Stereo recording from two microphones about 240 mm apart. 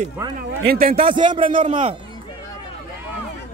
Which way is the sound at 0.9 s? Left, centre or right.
Right.